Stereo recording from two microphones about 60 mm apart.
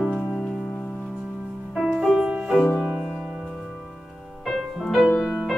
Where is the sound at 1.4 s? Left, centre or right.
Centre.